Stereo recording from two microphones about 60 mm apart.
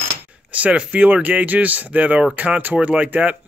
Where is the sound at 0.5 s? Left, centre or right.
Right.